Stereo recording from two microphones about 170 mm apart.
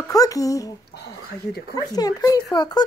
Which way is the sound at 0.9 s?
75° left (ahead or behind).